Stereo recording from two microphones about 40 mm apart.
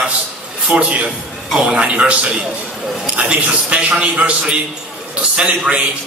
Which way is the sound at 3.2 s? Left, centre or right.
Right.